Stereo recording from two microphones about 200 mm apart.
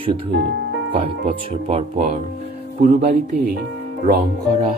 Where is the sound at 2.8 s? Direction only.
55° right (ahead or behind).